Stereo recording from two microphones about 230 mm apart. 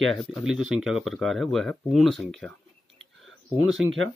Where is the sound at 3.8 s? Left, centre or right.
Right.